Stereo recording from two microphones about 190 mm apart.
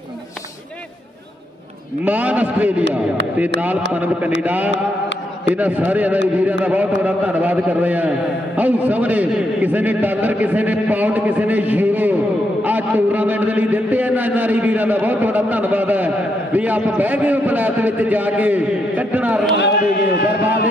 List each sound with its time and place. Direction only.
2.0 s a man's voice: 10° right (ahead or behind)
3.9 s a man's voice: 10° right (ahead or behind)
19.6 s a man's voice: 60° left (ahead or behind)